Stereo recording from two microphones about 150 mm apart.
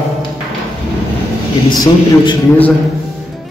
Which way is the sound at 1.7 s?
30° left (ahead or behind).